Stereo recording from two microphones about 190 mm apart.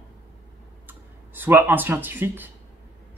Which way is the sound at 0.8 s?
10° right (ahead or behind).